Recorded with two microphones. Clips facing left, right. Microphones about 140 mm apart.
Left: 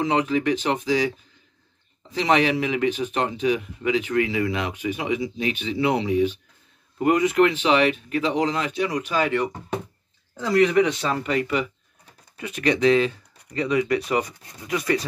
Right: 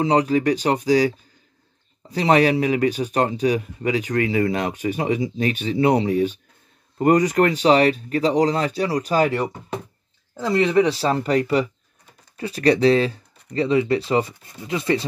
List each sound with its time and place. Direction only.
0.0 s speech: 35° right (ahead or behind)
10.5 s speech: 25° right (ahead or behind)